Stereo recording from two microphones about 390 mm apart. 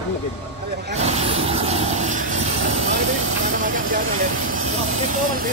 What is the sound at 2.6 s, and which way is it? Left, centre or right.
Vehicle, right.